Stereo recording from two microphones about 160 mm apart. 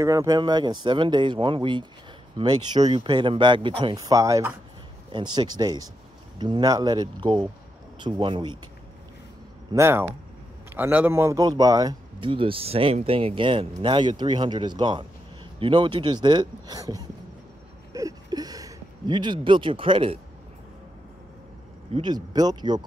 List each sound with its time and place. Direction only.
0.0 s speech: 20° right (ahead or behind)
9.8 s speech: 15° right (ahead or behind)
17.9 s a sound: 25° right (ahead or behind)
21.9 s speech: 25° right (ahead or behind)